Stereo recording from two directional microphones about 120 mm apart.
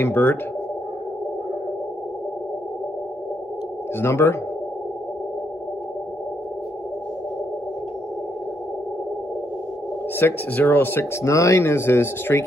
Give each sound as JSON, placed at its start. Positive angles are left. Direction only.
{"t": 0.0, "sound": "speech", "side_deg": 15}
{"t": 4.0, "sound": "speech", "side_deg": 20}
{"t": 10.1, "sound": "speech", "side_deg": 15}